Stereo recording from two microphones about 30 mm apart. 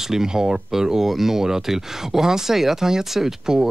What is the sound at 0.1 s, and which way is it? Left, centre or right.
Speech, centre.